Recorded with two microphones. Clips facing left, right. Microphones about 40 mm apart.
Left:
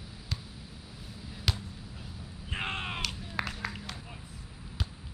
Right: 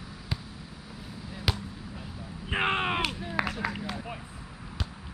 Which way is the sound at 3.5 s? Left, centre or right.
Centre.